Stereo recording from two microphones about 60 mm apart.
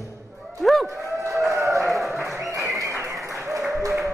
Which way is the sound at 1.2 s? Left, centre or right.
Right.